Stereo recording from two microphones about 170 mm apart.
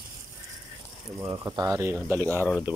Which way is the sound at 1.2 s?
20° right (ahead or behind).